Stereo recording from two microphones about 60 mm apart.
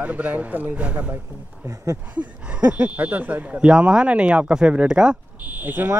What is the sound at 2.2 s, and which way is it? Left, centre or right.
Speech, right.